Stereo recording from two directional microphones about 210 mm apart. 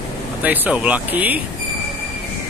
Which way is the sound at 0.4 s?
5° right (ahead or behind).